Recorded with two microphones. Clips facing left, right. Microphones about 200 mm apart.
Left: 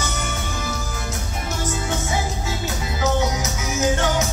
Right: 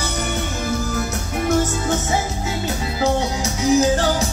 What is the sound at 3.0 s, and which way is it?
Music, 30° right (ahead or behind).